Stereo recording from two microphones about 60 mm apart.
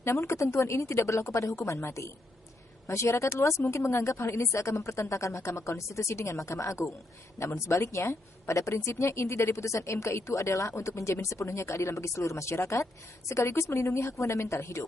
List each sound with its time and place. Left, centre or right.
0.0 s a woman's voice: left